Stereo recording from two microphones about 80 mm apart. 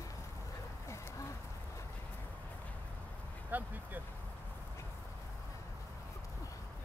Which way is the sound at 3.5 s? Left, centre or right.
Right.